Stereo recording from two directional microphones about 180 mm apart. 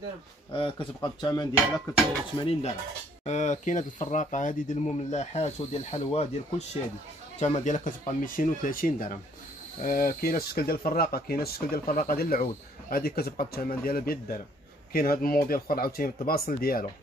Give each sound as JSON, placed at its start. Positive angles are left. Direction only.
{"t": 0.5, "sound": "speech", "side_deg": 30}
{"t": 3.3, "sound": "speech", "side_deg": 40}